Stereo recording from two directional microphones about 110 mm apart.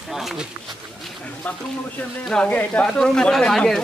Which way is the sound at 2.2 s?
10° left (ahead or behind).